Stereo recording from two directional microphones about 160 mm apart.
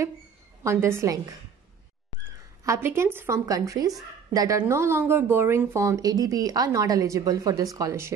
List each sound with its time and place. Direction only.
0.7 s a woman's voice: 15° right (ahead or behind)
2.6 s a woman's voice: 15° right (ahead or behind)